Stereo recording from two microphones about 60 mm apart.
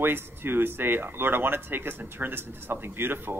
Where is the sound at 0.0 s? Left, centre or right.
Right.